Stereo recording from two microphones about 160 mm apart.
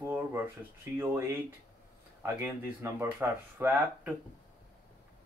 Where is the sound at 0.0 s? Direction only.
15° right (ahead or behind).